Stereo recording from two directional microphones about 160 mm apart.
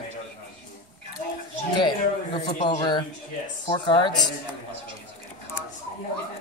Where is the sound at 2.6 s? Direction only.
30° left (ahead or behind).